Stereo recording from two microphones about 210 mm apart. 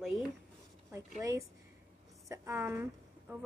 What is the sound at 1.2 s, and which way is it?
A woman's voice, 15° right (ahead or behind).